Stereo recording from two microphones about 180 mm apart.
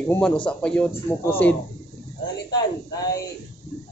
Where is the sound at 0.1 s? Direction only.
5° left (ahead or behind).